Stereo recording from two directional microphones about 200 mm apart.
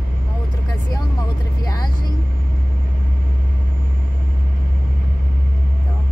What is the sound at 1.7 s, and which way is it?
Vehicle, 20° left (ahead or behind).